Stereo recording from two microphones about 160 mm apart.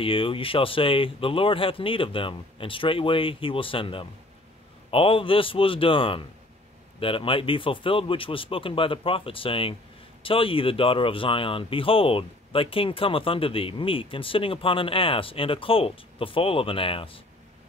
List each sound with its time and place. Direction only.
0.0 s speech: 35° left (ahead or behind)